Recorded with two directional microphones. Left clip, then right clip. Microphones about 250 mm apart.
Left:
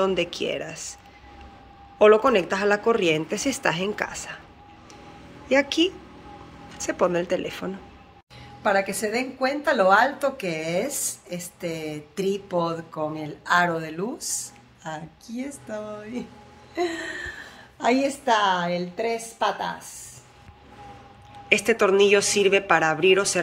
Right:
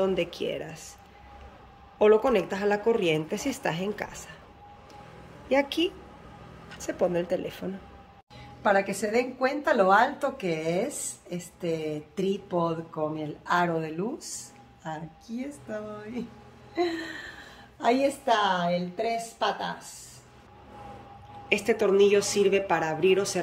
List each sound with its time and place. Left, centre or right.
0.0 s speech: centre
2.0 s a woman's voice: centre
5.5 s a woman's voice: centre
8.6 s a woman's voice: centre; by 19.7 s left
21.5 s a woman's voice: centre